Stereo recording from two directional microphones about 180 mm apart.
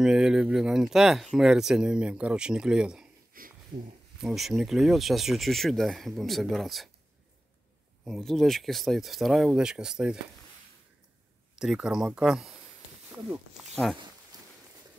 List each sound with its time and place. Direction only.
0.0 s speech: 5° right (ahead or behind)
3.3 s a sound: 50° right (ahead or behind)
3.7 s speech: 50° right (ahead or behind)
4.2 s speech: centre (ahead or behind)
8.0 s speech: centre (ahead or behind)
11.5 s speech: 5° right (ahead or behind)